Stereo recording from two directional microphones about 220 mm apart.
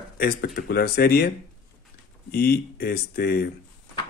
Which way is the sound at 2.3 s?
45° left (ahead or behind).